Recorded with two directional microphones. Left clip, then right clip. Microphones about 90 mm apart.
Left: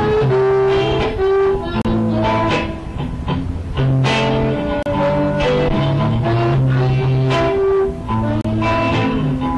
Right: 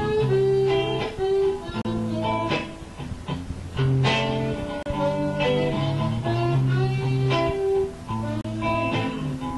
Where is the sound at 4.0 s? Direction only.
30° right (ahead or behind).